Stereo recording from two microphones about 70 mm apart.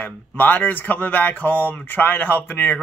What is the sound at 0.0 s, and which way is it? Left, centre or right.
Speech, left.